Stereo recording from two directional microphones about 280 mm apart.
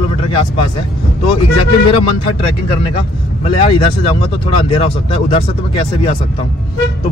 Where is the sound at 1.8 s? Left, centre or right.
Centre.